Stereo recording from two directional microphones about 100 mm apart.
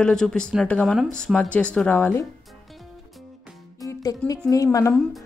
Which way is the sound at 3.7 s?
35° left (ahead or behind).